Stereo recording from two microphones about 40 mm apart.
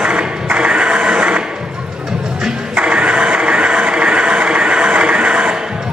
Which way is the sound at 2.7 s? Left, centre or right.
Right.